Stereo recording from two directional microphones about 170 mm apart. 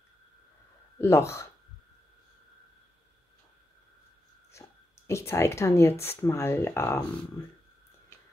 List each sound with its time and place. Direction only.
1.0 s speech: 15° left (ahead or behind)
4.5 s speech: 15° left (ahead or behind)